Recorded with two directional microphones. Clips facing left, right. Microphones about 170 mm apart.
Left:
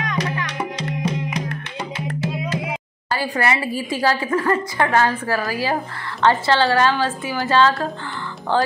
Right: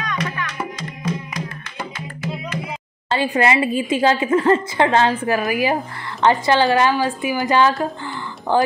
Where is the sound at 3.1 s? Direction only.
20° right (ahead or behind).